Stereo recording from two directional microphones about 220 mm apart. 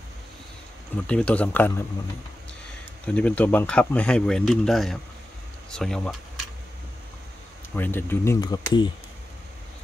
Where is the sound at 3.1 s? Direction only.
5° left (ahead or behind).